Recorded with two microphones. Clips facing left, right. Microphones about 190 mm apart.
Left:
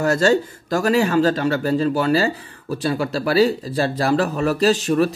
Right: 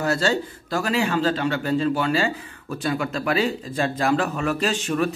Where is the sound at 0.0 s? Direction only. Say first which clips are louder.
Left 5 dB; 45° left (ahead or behind).